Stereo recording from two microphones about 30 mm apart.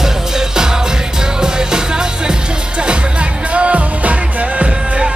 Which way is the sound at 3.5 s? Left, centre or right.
Right.